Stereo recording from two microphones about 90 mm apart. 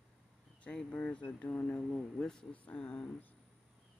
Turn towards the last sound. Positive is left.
turn(degrees=10)  # may be behind; listen again after turning